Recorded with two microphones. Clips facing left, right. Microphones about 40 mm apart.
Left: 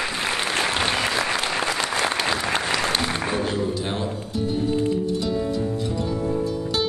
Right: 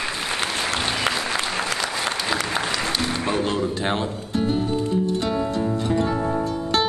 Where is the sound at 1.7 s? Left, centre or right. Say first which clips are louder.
Left 2 dB; left.